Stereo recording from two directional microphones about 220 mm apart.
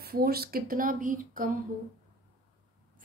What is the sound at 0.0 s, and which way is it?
A woman's voice, 45° right (ahead or behind).